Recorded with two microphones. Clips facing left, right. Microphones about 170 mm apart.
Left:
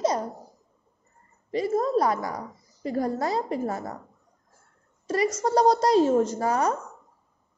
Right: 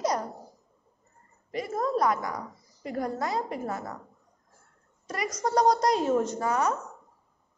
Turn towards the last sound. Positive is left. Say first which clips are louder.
# left 2 dB
turn(degrees=35)  # may be behind; listen again after turning